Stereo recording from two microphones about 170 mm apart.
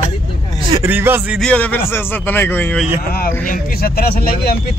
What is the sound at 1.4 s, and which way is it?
Speech, 5° left (ahead or behind).